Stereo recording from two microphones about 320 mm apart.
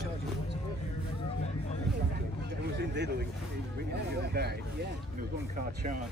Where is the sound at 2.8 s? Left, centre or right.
Right.